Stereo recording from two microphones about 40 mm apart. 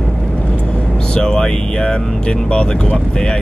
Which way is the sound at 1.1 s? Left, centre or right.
Centre.